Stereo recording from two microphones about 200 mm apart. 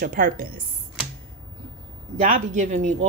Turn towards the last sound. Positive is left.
turn(degrees=-35)  # may be behind; listen again after turning